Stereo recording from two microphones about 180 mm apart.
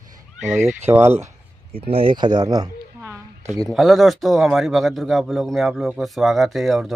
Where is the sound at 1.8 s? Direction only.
30° right (ahead or behind).